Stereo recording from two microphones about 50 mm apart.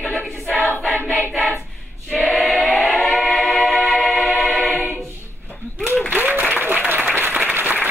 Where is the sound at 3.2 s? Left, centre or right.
Centre.